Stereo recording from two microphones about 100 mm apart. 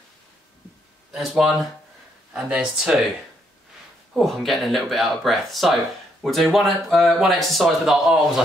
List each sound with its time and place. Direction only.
1.1 s a man's voice: centre (ahead or behind)
4.1 s a man's voice: centre (ahead or behind)